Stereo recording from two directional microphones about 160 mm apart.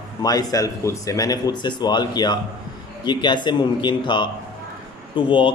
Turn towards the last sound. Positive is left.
turn(degrees=30)  # may be behind; listen again after turning